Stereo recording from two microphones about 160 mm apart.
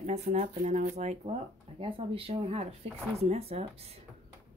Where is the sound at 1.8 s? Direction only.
35° right (ahead or behind).